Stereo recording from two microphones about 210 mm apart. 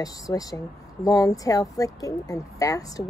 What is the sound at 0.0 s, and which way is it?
A woman's voice, 15° left (ahead or behind).